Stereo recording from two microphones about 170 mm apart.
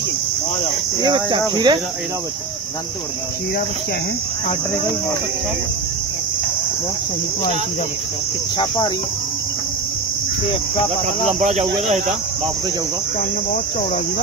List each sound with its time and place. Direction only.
1.0 s speech: 30° right (ahead or behind)
8.5 s speech: 25° left (ahead or behind)
11.3 s speech: 40° right (ahead or behind)